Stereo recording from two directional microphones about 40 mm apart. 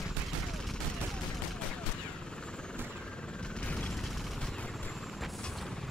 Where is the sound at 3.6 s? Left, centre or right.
Left.